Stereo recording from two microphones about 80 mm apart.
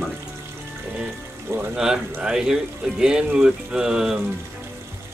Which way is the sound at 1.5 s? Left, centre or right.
Right.